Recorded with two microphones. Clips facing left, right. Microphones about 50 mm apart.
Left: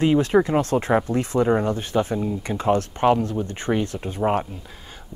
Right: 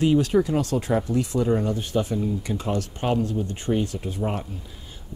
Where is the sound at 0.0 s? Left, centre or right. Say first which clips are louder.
Left 2 dB; left.